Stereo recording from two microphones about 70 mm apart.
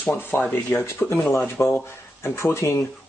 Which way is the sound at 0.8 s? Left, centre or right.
Left.